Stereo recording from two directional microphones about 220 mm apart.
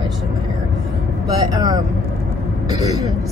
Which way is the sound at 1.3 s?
15° right (ahead or behind).